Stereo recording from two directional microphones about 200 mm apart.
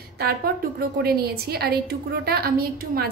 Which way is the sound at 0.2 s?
50° right (ahead or behind).